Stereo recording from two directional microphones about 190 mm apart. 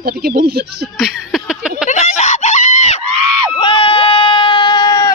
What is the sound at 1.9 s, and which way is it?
Screaming, 40° left (ahead or behind).